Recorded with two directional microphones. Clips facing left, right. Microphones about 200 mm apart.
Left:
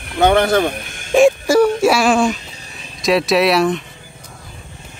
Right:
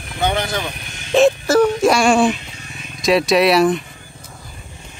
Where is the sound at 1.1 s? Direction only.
10° left (ahead or behind).